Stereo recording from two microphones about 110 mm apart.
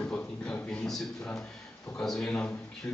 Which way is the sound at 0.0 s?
10° left (ahead or behind).